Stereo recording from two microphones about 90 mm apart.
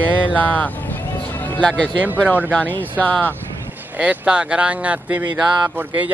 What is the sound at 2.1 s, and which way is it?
Speech, 20° left (ahead or behind).